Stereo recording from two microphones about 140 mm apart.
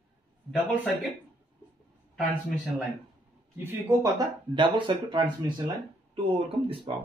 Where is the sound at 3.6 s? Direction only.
20° right (ahead or behind).